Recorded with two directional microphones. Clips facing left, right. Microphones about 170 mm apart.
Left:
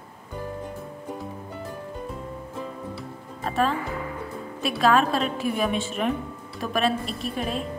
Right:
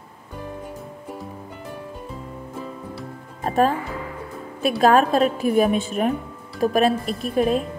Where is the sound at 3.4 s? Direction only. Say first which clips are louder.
Right 5 dB; 45° right (ahead or behind).